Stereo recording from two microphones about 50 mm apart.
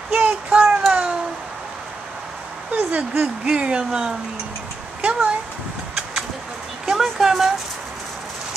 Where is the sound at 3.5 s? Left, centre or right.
Right.